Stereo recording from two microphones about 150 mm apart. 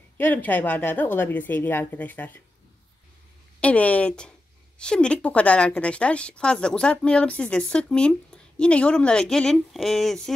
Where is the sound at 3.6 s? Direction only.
10° left (ahead or behind).